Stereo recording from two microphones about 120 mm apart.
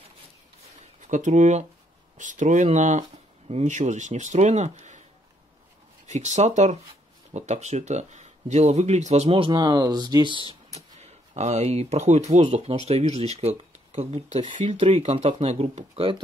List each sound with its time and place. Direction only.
1.0 s speech: 90° right
2.1 s speech: 90° right; by 5.0 s 75° right (ahead or behind)
6.0 s speech: 75° right (ahead or behind)
9.3 s speech: 45° right (ahead or behind)
10.7 s speech: 65° right (ahead or behind); by 14.8 s 85° right
14.8 s speech: 60° right (ahead or behind)